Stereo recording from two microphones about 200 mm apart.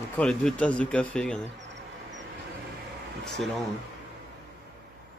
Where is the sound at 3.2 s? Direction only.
Centre (ahead or behind).